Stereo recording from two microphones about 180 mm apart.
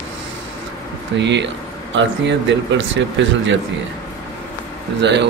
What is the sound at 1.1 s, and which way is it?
Speech, 80° right.